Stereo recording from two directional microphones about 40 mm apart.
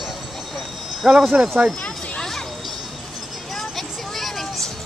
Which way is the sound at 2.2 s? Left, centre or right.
Centre.